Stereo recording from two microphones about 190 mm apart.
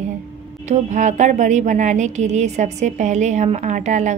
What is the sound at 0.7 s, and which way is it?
Speech, 40° right (ahead or behind).